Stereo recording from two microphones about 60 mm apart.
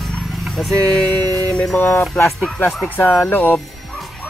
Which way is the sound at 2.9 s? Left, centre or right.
Left.